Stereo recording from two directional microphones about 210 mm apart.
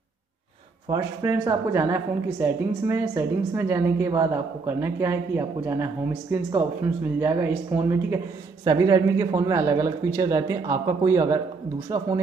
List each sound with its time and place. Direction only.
0.9 s speech: 15° right (ahead or behind)